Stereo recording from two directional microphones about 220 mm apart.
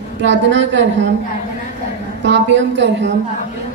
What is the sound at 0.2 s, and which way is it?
Speech, 55° right (ahead or behind).